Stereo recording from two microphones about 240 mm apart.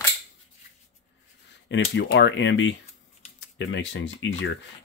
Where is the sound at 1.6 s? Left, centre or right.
Left.